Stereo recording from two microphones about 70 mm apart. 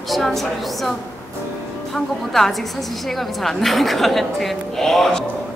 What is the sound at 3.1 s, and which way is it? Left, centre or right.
A woman's voice, centre.